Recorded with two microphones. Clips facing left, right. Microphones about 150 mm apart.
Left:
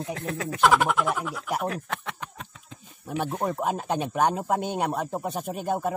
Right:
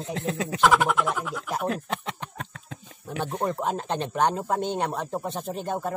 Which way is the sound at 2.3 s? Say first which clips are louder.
Right 5 dB; 65° right (ahead or behind).